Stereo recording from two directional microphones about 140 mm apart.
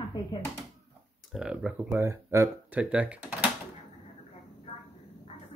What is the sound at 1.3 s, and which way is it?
Speech, 5° right (ahead or behind).